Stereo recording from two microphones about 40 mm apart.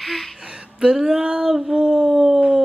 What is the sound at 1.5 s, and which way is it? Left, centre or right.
Mantra, centre.